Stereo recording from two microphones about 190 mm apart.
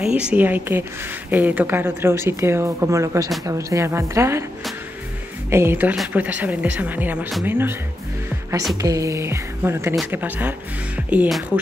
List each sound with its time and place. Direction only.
0.0 s speech: 5° right (ahead or behind)
5.5 s speech: 10° right (ahead or behind)
8.8 s speech: 15° right (ahead or behind)
11.1 s music: 5° right (ahead or behind)